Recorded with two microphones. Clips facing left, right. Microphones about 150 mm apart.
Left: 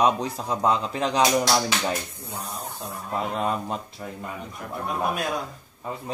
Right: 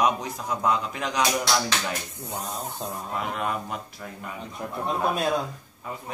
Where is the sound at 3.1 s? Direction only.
30° left (ahead or behind).